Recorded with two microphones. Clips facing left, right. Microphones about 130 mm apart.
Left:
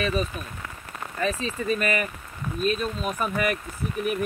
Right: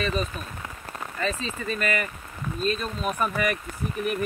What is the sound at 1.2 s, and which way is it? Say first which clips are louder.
Speech: left 3 dB; 15° left (ahead or behind).